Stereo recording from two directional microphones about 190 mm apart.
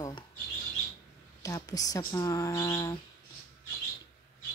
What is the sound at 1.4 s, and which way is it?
Speech, 20° left (ahead or behind).